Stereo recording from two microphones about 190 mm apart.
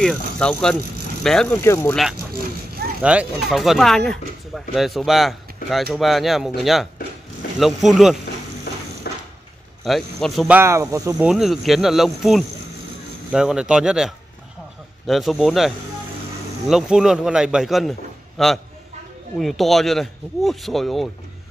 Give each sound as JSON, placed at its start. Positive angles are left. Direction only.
{"t": 0.0, "sound": "speech", "side_deg": 5}
{"t": 1.6, "sound": "speech", "side_deg": 15}
{"t": 3.0, "sound": "speech", "side_deg": -5}
{"t": 8.7, "sound": "music", "side_deg": 60}
{"t": 9.1, "sound": "a sound", "side_deg": 55}
{"t": 9.8, "sound": "speech", "side_deg": 0}
{"t": 10.6, "sound": "speech", "side_deg": -15}
{"t": 11.1, "sound": "speech", "side_deg": -5}